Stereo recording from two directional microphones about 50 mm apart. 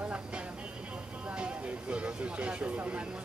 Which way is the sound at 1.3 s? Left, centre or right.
Right.